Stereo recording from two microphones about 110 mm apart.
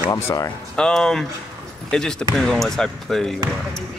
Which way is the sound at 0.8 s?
5° left (ahead or behind).